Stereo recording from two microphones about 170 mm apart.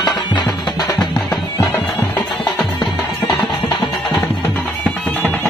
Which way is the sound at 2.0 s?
10° left (ahead or behind).